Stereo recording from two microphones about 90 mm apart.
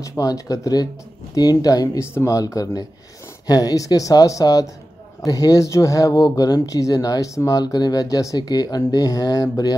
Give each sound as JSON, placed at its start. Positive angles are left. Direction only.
{"t": 0.0, "sound": "speech", "side_deg": 40}
{"t": 2.0, "sound": "speech", "side_deg": 35}